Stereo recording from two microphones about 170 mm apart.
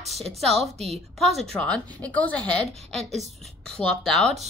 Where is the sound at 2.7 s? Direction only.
40° right (ahead or behind).